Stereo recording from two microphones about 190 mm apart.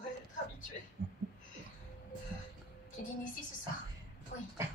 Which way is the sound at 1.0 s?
65° right (ahead or behind).